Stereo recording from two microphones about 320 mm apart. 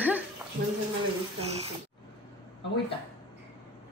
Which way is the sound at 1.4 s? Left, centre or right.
Centre.